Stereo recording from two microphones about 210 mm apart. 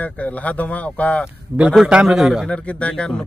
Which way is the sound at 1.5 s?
5° right (ahead or behind).